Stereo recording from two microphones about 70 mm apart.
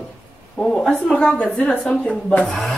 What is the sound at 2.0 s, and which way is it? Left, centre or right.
Speech, centre.